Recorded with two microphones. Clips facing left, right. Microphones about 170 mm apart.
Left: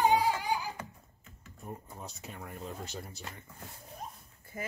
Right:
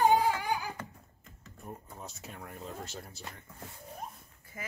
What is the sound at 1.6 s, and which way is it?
Speech, centre (ahead or behind).